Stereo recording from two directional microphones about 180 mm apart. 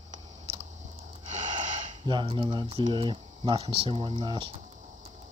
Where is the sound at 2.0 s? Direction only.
25° right (ahead or behind).